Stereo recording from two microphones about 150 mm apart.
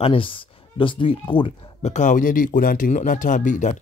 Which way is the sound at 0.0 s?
35° left (ahead or behind).